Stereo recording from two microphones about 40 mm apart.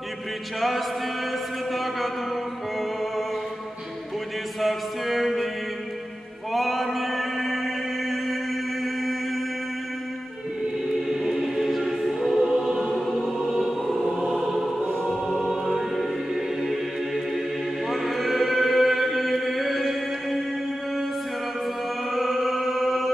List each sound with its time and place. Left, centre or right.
0.6 s music: centre
4.6 s music: centre
6.5 s mantra: centre
11.1 s choir: centre
13.9 s choir: centre
14.4 s music: centre
14.9 s choir: centre
17.8 s chant: centre
22.1 s music: centre